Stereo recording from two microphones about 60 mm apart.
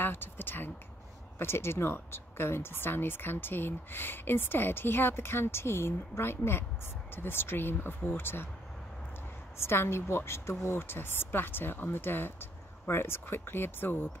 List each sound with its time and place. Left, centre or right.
0.0 s a sound: left
1.4 s speech: left
9.6 s a woman's voice: left